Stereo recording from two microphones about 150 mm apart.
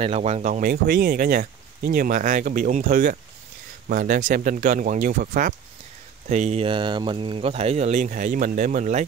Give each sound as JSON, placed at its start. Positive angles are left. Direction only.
{"t": 0.0, "sound": "speech", "side_deg": -45}
{"t": 6.2, "sound": "speech", "side_deg": -50}